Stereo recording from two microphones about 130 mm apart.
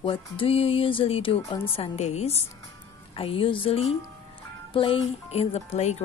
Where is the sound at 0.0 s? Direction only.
45° left (ahead or behind).